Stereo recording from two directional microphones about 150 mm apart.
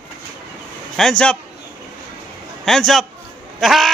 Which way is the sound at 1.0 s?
5° left (ahead or behind).